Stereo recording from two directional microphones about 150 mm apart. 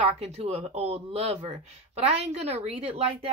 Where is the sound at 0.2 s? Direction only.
45° right (ahead or behind).